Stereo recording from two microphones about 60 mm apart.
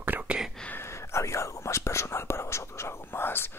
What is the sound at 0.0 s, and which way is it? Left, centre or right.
Whispering, right.